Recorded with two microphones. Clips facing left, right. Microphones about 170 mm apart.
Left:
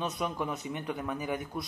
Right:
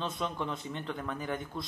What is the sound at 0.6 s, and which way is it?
Speech, 15° left (ahead or behind).